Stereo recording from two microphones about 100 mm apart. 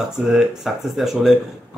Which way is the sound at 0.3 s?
5° right (ahead or behind).